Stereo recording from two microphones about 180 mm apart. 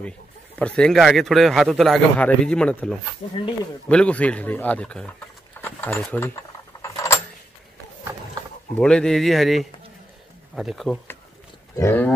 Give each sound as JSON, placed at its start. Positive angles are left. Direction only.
{"t": 0.6, "sound": "a man's voice", "side_deg": 5}
{"t": 6.8, "sound": "keys jangling", "side_deg": 15}
{"t": 8.7, "sound": "a man's voice", "side_deg": 5}
{"t": 11.7, "sound": "speech", "side_deg": 15}